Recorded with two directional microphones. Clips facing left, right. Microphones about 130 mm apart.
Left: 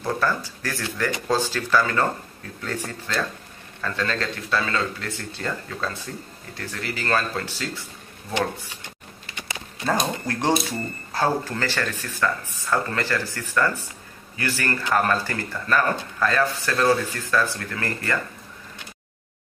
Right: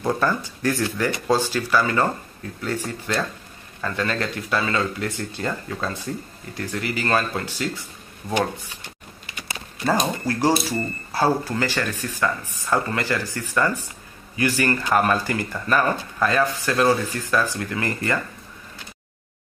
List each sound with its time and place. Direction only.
0.2 s speech: 20° right (ahead or behind)
9.8 s speech: 5° right (ahead or behind)